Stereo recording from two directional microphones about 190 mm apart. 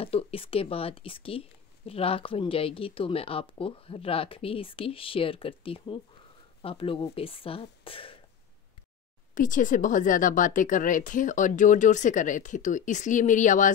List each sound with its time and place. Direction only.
0.0 s speech: 30° left (ahead or behind)
9.3 s speech: 45° left (ahead or behind)